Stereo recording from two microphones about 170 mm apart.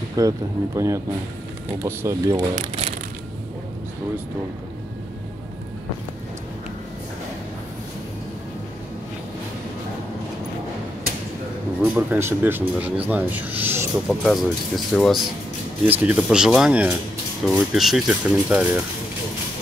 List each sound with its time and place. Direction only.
0.2 s speech: 20° right (ahead or behind)
2.5 s speech: 40° right (ahead or behind)
11.8 s speech: 10° right (ahead or behind)
14.0 s speech: centre (ahead or behind)
15.8 s speech: 10° right (ahead or behind)